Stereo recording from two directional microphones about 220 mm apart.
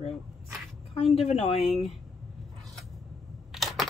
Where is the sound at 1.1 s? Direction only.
25° left (ahead or behind).